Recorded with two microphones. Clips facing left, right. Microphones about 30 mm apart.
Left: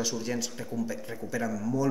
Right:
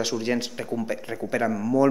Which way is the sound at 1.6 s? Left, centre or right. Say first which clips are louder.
Right 9 dB; right.